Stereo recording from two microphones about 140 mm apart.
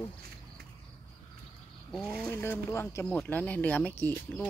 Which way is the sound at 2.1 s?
10° left (ahead or behind).